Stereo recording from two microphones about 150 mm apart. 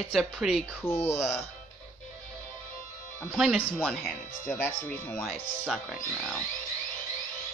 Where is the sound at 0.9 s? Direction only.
45° left (ahead or behind).